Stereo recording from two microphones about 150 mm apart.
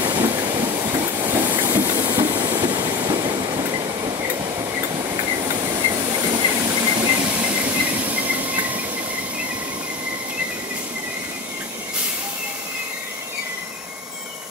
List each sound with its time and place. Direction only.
0.0 s train: 30° right (ahead or behind)
1.6 s train: 10° right (ahead or behind)
2.3 s train: 30° right (ahead or behind)
7.3 s train: 10° right (ahead or behind)